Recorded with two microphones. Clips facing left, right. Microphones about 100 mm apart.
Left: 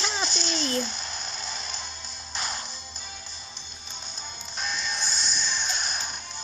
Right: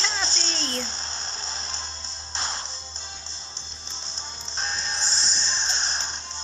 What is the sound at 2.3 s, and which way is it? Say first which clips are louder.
Music: right 1 dB; 30° right (ahead or behind).